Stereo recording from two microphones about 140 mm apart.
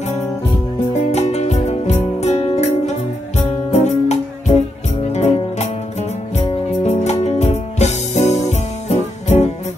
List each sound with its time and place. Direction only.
0.9 s music: 55° left (ahead or behind)
3.7 s music: 50° left (ahead or behind)